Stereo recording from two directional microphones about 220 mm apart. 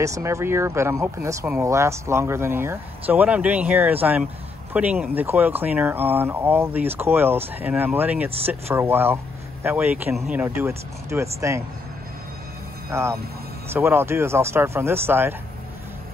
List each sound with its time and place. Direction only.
0.0 s speech: 15° right (ahead or behind)
12.9 s speech: 10° right (ahead or behind)